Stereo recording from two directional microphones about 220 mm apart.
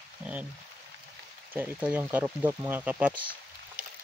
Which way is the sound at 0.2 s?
5° right (ahead or behind).